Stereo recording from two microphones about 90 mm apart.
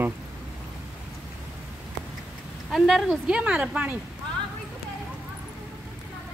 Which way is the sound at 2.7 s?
Centre (ahead or behind).